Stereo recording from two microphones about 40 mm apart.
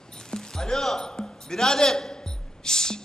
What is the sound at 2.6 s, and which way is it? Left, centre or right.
Music, centre.